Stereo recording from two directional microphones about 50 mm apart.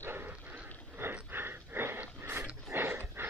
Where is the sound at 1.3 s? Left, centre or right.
Right.